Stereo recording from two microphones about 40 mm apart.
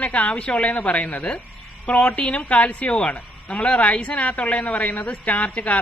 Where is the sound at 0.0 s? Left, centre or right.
Left.